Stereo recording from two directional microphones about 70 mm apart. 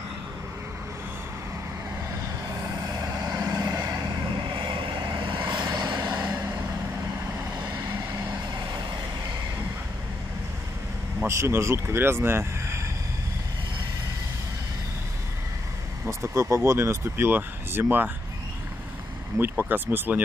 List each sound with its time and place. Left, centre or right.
3.0 s vehicle: right
5.1 s vehicle: right
11.2 s speech: right
16.1 s speech: right
19.3 s speech: right